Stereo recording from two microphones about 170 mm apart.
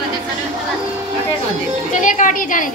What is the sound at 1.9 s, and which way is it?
Speech, 50° left (ahead or behind).